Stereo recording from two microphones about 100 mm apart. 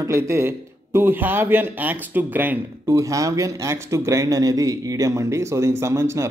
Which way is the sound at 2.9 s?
35° right (ahead or behind).